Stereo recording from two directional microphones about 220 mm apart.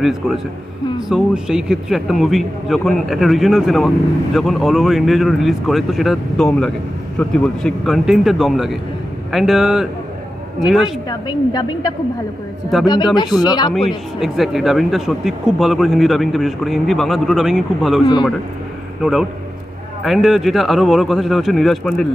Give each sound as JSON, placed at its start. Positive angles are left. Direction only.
{"t": 0.0, "sound": "a man's voice", "side_deg": 0}
{"t": 11.1, "sound": "a woman's voice", "side_deg": 15}
{"t": 13.7, "sound": "a man's voice", "side_deg": 0}
{"t": 20.0, "sound": "a man's voice", "side_deg": 0}